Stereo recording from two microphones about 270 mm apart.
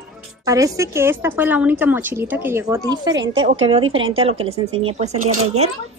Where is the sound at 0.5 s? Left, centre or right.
Centre.